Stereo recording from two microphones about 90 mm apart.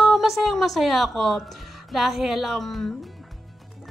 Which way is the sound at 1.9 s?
5° right (ahead or behind).